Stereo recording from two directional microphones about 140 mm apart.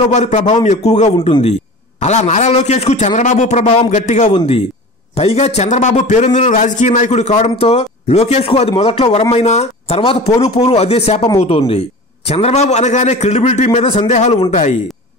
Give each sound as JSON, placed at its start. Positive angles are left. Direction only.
{"t": 0.1, "sound": "a man's voice", "side_deg": 55}
{"t": 6.2, "sound": "speech", "side_deg": 45}
{"t": 6.5, "sound": "a man's voice", "side_deg": 60}